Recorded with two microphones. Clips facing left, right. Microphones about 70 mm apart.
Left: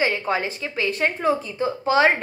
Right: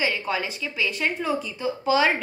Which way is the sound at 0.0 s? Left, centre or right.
Left.